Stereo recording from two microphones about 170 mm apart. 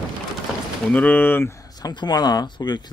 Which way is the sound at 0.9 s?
10° left (ahead or behind).